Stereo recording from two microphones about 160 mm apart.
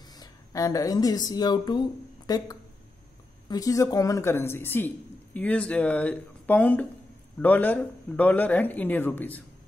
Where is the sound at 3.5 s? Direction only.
20° left (ahead or behind).